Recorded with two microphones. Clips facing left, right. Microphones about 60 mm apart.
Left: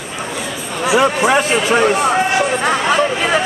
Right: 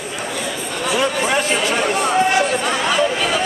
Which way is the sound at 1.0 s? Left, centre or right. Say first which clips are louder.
Left 4 dB; left.